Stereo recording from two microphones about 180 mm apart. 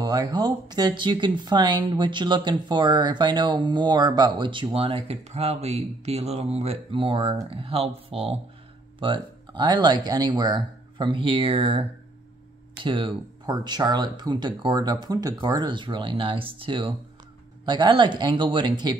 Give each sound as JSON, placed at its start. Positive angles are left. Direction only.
{"t": 0.0, "sound": "speech", "side_deg": -20}
{"t": 12.8, "sound": "speech", "side_deg": -25}